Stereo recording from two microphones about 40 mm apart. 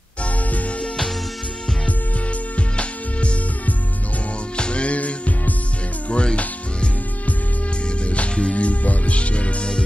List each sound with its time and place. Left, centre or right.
0.2 s music: left
2.8 s music: left
4.6 s music: left
8.0 s music: left